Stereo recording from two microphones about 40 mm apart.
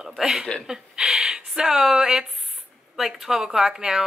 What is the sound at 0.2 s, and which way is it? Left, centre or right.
Speech, centre.